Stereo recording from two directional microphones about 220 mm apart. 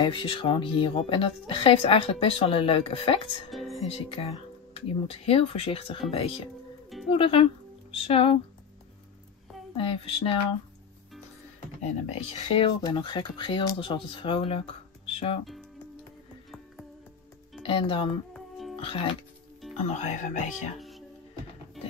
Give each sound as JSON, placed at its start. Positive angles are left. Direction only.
{"t": 0.0, "sound": "speech", "side_deg": 25}
{"t": 3.4, "sound": "music", "side_deg": 0}
{"t": 3.9, "sound": "speech", "side_deg": 25}
{"t": 9.8, "sound": "speech", "side_deg": 25}
{"t": 11.8, "sound": "speech", "side_deg": 30}
{"t": 17.6, "sound": "speech", "side_deg": 25}
{"t": 18.3, "sound": "music", "side_deg": 0}
{"t": 18.8, "sound": "speech", "side_deg": 25}